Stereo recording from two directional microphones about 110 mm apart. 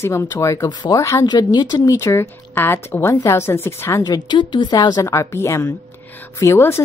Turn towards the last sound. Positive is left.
turn(degrees=25)  # may be behind; listen again after turning